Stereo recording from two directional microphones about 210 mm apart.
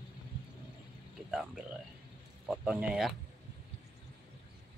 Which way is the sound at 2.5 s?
5° right (ahead or behind).